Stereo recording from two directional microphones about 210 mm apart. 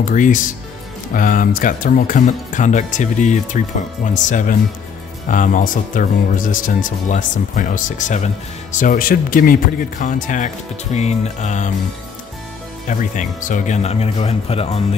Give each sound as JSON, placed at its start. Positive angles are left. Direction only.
{"t": 0.0, "sound": "speech", "side_deg": 40}
{"t": 12.8, "sound": "speech", "side_deg": 35}